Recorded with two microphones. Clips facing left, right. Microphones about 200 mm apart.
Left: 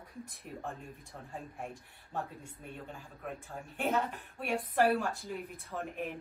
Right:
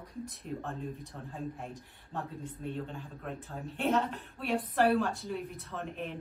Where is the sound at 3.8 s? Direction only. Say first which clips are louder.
Right 3 dB; 5° left (ahead or behind).